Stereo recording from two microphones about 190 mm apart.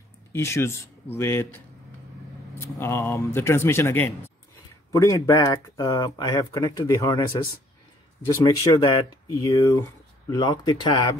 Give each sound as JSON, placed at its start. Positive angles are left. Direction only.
{"t": 0.3, "sound": "speech", "side_deg": 15}
{"t": 2.6, "sound": "speech", "side_deg": 10}
{"t": 8.5, "sound": "speech", "side_deg": 20}